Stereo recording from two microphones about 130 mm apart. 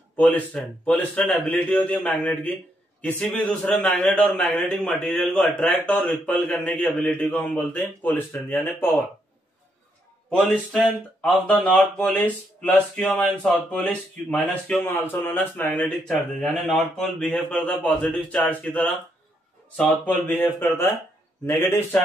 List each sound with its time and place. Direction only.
0.2 s a man's voice: 15° left (ahead or behind)
10.3 s a man's voice: 5° left (ahead or behind)
16.1 s a man's voice: centre (ahead or behind)
20.2 s a man's voice: 15° left (ahead or behind)